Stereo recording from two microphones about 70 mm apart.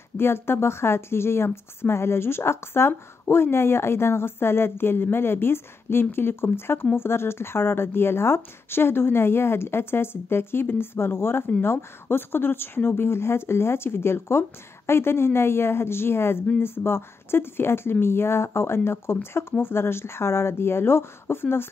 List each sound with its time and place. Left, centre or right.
0.2 s a woman's voice: left